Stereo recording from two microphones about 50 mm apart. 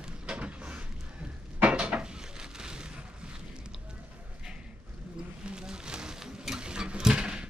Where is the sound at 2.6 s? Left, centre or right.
Centre.